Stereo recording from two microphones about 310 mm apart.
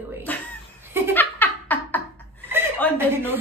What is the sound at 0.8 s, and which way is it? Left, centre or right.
Laughter, centre.